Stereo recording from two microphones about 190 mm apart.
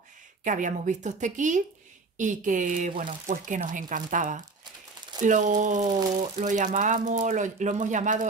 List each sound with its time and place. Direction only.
0.4 s speech: 40° right (ahead or behind)